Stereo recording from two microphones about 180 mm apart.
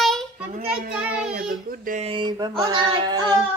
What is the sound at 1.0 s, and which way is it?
Child singing, 10° right (ahead or behind).